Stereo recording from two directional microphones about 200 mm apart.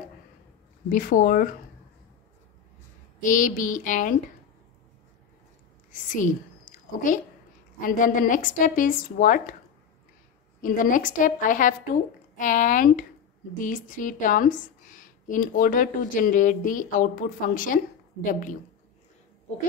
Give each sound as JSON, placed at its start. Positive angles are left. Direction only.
{"t": 0.8, "sound": "speech", "side_deg": 40}
{"t": 3.2, "sound": "a woman's voice", "side_deg": 40}
{"t": 5.9, "sound": "whispering", "side_deg": 40}
{"t": 7.8, "sound": "a woman's voice", "side_deg": 40}
{"t": 10.6, "sound": "a woman's voice", "side_deg": 40}